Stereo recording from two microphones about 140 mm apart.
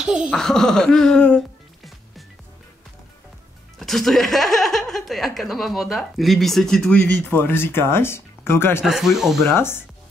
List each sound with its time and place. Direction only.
0.0 s speech: 5° right (ahead or behind)
3.8 s speech: centre (ahead or behind); by 8.8 s 15° left (ahead or behind)
8.8 s speech: 5° right (ahead or behind)
9.4 s speech: 15° left (ahead or behind)